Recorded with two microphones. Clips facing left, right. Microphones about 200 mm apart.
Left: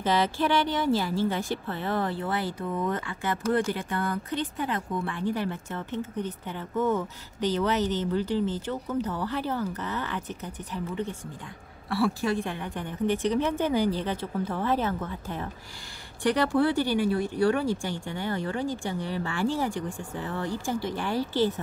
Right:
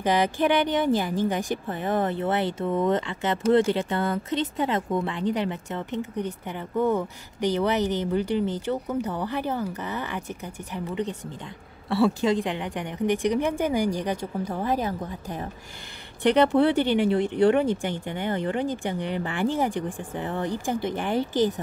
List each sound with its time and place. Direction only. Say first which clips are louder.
0.0 s a woman's voice: right 3 dB; 15° right (ahead or behind)
11.9 s a woman's voice: right 4 dB; 20° right (ahead or behind)